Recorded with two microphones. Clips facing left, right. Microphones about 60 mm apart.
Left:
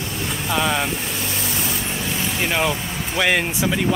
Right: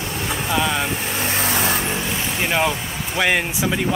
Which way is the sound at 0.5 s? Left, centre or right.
Centre.